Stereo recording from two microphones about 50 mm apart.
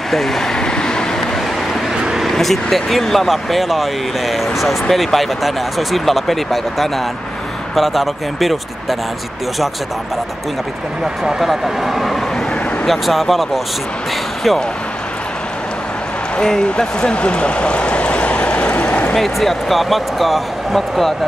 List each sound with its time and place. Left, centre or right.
0.1 s speech: centre
0.6 s vehicle: centre
2.2 s speech: centre
11.4 s speech: centre
16.3 s speech: centre
18.7 s a sound: left
19.1 s speech: centre